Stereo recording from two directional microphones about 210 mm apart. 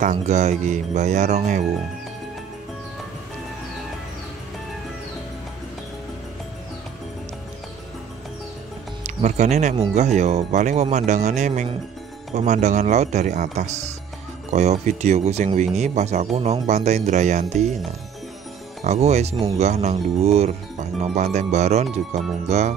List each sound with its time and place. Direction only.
0.0 s speech: 35° right (ahead or behind)
9.0 s speech: 35° right (ahead or behind)
18.9 s speech: 30° right (ahead or behind)